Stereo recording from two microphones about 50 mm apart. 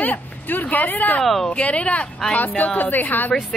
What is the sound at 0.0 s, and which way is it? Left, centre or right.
Speech, left.